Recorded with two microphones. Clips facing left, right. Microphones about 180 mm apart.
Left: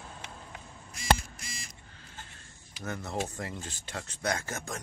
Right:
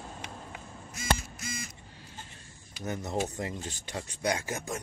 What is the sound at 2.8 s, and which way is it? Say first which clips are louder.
Speech: right 3 dB; 20° right (ahead or behind).